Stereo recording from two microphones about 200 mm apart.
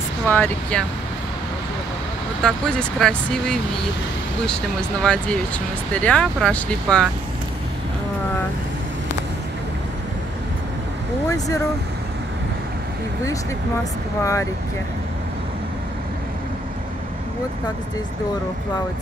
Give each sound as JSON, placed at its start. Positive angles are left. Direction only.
{"t": 0.3, "sound": "speech", "side_deg": 10}
{"t": 2.4, "sound": "speech", "side_deg": 5}
{"t": 5.0, "sound": "speech", "side_deg": 5}
{"t": 11.2, "sound": "speech", "side_deg": 15}
{"t": 14.2, "sound": "speech", "side_deg": 15}